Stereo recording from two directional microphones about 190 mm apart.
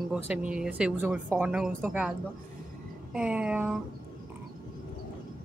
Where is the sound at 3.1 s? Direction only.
5° right (ahead or behind).